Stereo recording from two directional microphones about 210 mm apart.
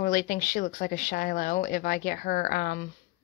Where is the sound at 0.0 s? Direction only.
40° left (ahead or behind).